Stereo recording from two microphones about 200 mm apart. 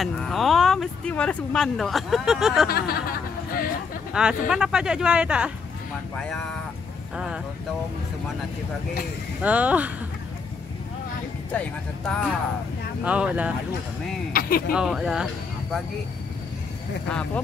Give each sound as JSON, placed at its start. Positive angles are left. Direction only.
{"t": 0.0, "sound": "speech", "side_deg": 0}
{"t": 2.7, "sound": "a sound", "side_deg": 50}
{"t": 4.1, "sound": "speech", "side_deg": -5}
{"t": 9.4, "sound": "speech", "side_deg": -5}
{"t": 12.1, "sound": "speech", "side_deg": -5}
{"t": 14.3, "sound": "speech", "side_deg": 45}
{"t": 14.7, "sound": "speech", "side_deg": -5}